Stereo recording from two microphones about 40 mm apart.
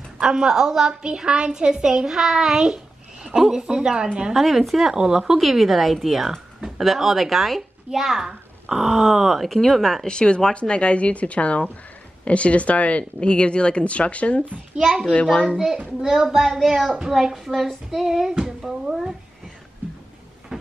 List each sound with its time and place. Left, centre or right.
0.2 s a woman's voice: centre
4.3 s speech: centre
4.9 s a woman's voice: centre
5.4 s speech: centre
10.0 s speech: left
15.5 s a woman's voice: centre
16.5 s a woman's voice: centre